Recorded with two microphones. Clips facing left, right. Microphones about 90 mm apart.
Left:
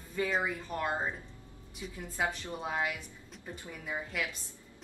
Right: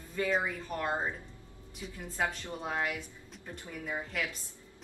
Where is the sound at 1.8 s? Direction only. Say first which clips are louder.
Even; 5° left (ahead or behind).